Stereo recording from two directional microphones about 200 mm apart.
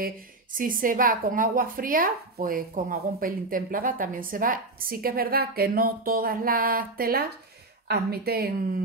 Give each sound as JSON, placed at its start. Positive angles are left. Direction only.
{"t": 0.0, "sound": "a woman's voice", "side_deg": -45}